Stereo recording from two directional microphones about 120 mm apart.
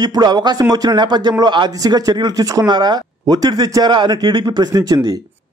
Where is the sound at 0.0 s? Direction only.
35° right (ahead or behind).